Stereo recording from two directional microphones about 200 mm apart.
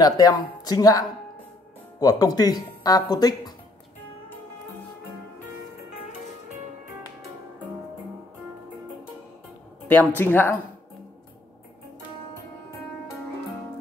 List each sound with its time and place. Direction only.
0.0 s speech: 20° left (ahead or behind)
9.8 s a woman's voice: 10° left (ahead or behind)